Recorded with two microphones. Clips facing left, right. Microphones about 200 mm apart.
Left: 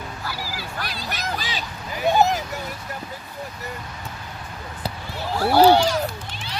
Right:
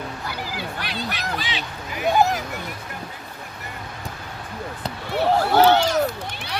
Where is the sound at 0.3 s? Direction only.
20° right (ahead or behind).